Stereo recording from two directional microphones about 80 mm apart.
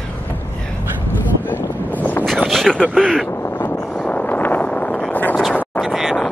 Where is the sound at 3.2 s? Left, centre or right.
Left.